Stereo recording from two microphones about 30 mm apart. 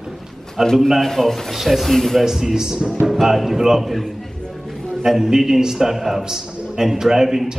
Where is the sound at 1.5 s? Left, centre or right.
Centre.